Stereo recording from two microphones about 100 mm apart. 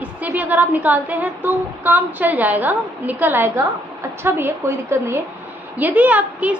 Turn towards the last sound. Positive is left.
turn(degrees=-15)  # may be behind; listen again after turning